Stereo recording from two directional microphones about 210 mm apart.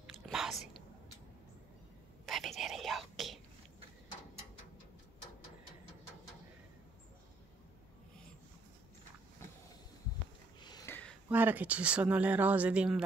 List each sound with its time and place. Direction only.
0.0 s chewing: centre (ahead or behind)
2.2 s whispering: centre (ahead or behind)
10.6 s a sound: 20° left (ahead or behind)
11.2 s speech: 10° right (ahead or behind)